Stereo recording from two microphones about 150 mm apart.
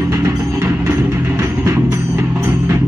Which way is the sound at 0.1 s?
20° right (ahead or behind).